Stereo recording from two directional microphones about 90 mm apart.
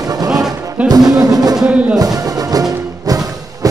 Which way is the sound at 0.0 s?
45° right (ahead or behind).